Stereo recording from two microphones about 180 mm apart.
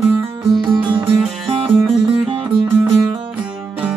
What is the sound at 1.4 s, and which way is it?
Music, 30° right (ahead or behind).